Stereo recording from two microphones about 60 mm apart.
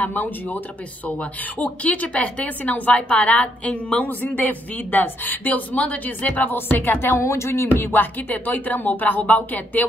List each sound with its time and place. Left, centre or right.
0.0 s a woman's voice: left
7.2 s speech: left
7.9 s a woman's voice: left